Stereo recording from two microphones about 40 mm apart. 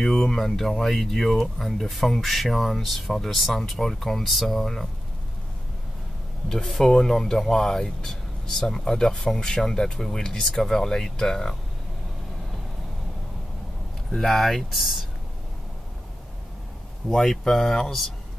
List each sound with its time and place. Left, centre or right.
0.0 s speech: centre
6.5 s speech: centre
14.1 s speech: centre
17.1 s speech: centre